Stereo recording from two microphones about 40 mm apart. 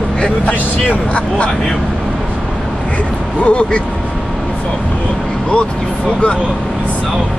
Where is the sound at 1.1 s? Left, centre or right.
Left.